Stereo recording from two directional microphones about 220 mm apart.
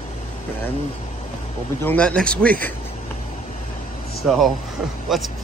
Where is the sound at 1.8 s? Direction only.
5° left (ahead or behind).